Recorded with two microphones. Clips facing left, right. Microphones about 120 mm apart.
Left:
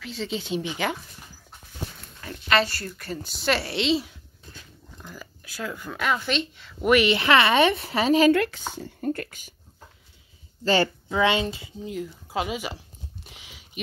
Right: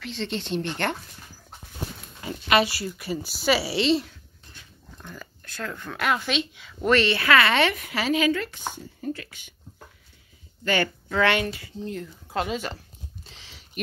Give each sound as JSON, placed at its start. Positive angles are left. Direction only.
{"t": 0.0, "sound": "speech", "side_deg": 5}
{"t": 2.2, "sound": "speech", "side_deg": -10}
{"t": 6.8, "sound": "speech", "side_deg": 15}
{"t": 7.7, "sound": "speech", "side_deg": 30}
{"t": 8.3, "sound": "speech", "side_deg": 75}
{"t": 9.0, "sound": "speech", "side_deg": 50}
{"t": 10.6, "sound": "speech", "side_deg": 30}
{"t": 11.1, "sound": "speech", "side_deg": 20}
{"t": 11.8, "sound": "speech", "side_deg": 5}
{"t": 13.2, "sound": "a sound", "side_deg": 10}